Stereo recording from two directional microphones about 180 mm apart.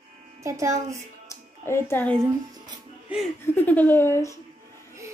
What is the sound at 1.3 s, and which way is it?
Speech, 15° left (ahead or behind).